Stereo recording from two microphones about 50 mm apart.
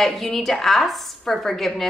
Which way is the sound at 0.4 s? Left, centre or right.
Centre.